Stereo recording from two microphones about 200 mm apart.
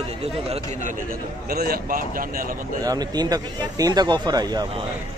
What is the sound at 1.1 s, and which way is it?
A man's voice, 50° right (ahead or behind).